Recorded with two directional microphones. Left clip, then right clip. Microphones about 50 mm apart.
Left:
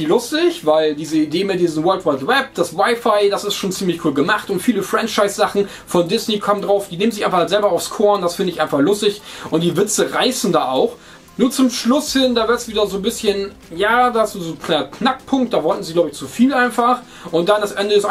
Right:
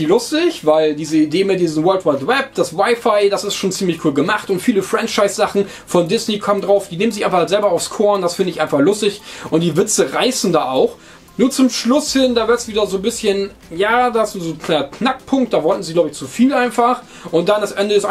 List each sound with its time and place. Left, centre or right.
0.0 s speech: right